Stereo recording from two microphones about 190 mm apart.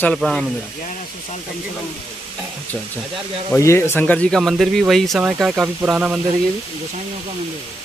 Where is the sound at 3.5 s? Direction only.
15° left (ahead or behind); by 6.2 s 5° right (ahead or behind).